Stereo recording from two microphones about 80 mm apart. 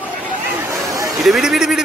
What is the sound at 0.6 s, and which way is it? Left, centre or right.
Hubbub, right.